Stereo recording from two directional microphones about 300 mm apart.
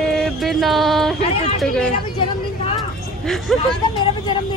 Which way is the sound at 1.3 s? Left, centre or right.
Left.